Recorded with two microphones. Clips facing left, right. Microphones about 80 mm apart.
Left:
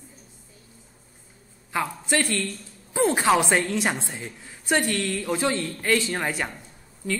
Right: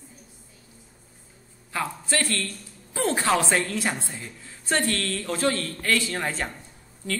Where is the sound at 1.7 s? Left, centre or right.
Centre.